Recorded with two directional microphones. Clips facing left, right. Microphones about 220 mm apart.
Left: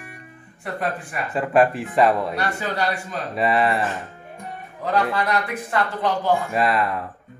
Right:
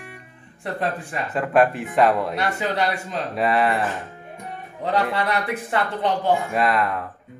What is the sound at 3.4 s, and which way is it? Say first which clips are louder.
Speech: even; centre (ahead or behind).